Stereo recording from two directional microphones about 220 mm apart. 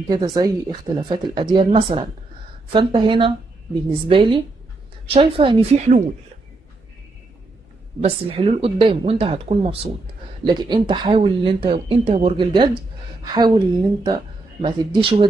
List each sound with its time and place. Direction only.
0.1 s speech: 20° right (ahead or behind)
8.0 s speech: 25° right (ahead or behind)